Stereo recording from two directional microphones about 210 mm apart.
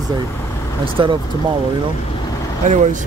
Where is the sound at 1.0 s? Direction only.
25° right (ahead or behind).